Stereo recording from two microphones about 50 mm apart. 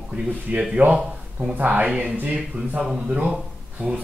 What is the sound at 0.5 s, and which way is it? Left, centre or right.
Speech, right.